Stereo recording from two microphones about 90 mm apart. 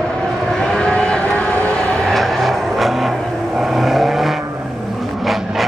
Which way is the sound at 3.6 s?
5° right (ahead or behind).